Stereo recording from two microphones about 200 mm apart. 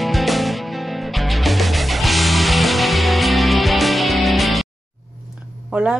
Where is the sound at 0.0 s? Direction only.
Centre (ahead or behind).